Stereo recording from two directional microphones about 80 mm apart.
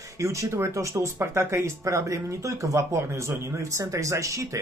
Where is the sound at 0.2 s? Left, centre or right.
Right.